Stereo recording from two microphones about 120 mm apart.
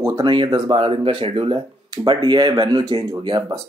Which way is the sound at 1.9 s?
35° right (ahead or behind).